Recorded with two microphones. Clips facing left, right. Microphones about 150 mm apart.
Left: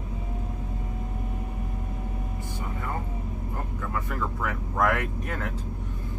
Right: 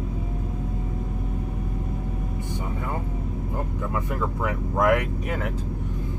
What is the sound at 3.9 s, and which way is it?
Speech, 20° right (ahead or behind).